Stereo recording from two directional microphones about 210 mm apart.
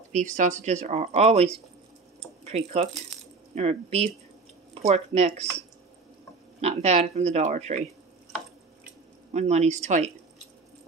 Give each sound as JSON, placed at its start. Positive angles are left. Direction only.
{"t": 0.1, "sound": "speech", "side_deg": -35}
{"t": 6.6, "sound": "speech", "side_deg": -30}
{"t": 9.3, "sound": "speech", "side_deg": -30}